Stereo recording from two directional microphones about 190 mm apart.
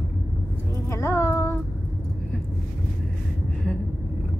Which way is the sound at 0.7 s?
15° left (ahead or behind).